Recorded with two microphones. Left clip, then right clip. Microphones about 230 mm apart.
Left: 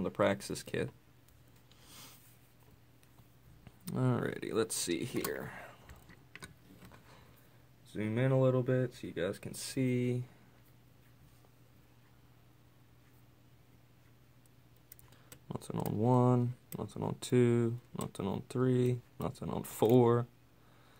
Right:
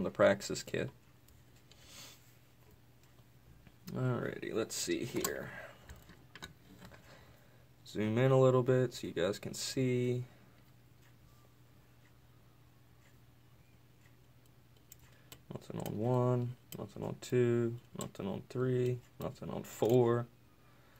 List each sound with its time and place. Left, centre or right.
0.0 s speech: centre
3.8 s speech: centre
7.8 s speech: centre
15.4 s speech: left